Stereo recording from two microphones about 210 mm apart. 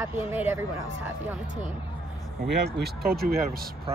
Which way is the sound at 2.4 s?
50° right (ahead or behind).